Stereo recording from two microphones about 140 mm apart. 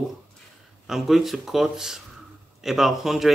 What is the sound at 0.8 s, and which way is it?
Speech, centre (ahead or behind).